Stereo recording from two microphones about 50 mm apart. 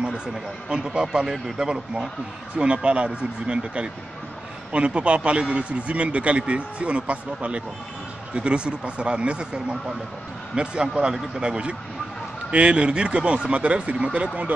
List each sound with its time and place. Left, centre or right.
0.0 s a man's voice: centre